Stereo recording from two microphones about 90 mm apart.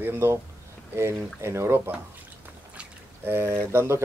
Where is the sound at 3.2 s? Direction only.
25° right (ahead or behind).